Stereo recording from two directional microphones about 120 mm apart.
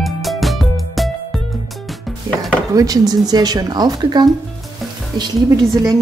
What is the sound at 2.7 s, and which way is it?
A woman's voice, 30° right (ahead or behind).